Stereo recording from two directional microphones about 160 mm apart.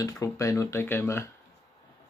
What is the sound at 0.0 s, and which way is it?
Speech, 20° left (ahead or behind).